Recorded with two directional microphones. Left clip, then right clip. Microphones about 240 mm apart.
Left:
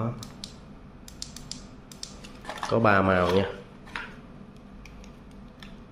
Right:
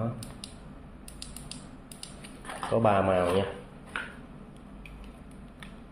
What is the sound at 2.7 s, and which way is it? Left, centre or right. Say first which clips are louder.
Speech: left 2 dB; centre.